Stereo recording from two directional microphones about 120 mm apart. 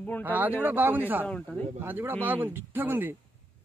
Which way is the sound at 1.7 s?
15° right (ahead or behind).